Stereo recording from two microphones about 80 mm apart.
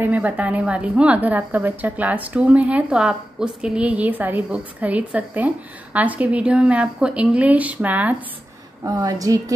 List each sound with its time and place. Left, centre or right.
0.0 s a woman's voice: right
8.8 s a woman's voice: right